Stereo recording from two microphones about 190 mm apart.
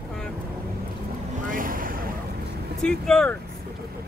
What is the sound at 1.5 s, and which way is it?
Boat, 45° right (ahead or behind).